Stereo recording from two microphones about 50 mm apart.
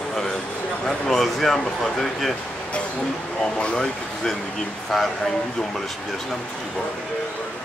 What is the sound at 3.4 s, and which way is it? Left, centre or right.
Speech, centre.